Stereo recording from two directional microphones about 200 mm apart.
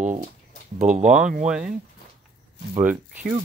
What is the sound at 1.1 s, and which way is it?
Speech, 5° right (ahead or behind).